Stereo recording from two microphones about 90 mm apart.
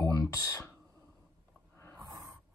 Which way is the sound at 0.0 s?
40° left (ahead or behind).